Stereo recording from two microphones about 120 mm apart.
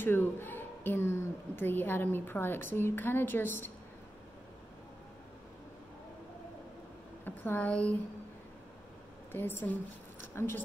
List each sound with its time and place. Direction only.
0.0 s a woman's voice: 15° left (ahead or behind)
7.2 s a woman's voice: 15° left (ahead or behind)
9.3 s a woman's voice: 15° left (ahead or behind)